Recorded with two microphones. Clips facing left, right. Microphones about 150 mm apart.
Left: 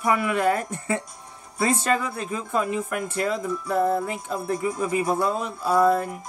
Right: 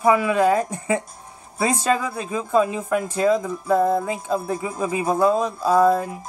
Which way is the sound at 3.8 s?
20° right (ahead or behind).